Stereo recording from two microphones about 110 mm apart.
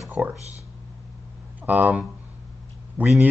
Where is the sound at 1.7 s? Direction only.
15° right (ahead or behind).